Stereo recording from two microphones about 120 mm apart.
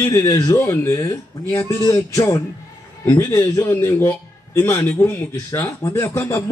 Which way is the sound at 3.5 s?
20° left (ahead or behind).